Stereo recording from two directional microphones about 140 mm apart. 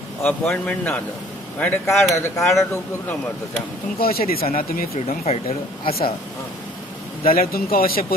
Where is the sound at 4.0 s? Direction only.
90° left.